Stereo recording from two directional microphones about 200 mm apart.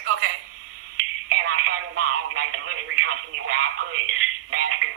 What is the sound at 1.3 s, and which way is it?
Telephone, 90° right.